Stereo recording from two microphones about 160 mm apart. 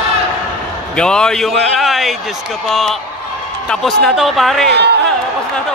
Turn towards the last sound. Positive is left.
turn(degrees=-90)